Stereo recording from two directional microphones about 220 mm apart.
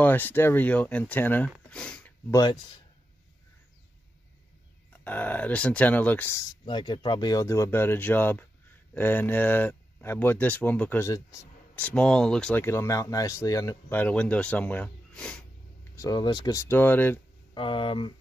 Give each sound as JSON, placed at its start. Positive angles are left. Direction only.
{"t": 0.0, "sound": "speech", "side_deg": 10}
{"t": 1.5, "sound": "a sound", "side_deg": 5}
{"t": 2.3, "sound": "speech", "side_deg": 20}
{"t": 5.0, "sound": "speech", "side_deg": 5}
{"t": 16.0, "sound": "speech", "side_deg": 20}
{"t": 17.6, "sound": "speech", "side_deg": 25}